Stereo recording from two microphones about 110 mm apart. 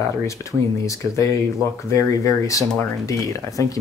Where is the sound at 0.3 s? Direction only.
30° left (ahead or behind).